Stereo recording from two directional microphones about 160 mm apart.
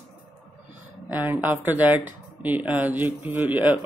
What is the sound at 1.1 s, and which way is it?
Speech, 10° right (ahead or behind).